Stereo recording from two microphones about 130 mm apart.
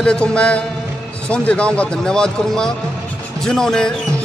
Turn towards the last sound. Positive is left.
turn(degrees=5)  # may be behind; listen again after turning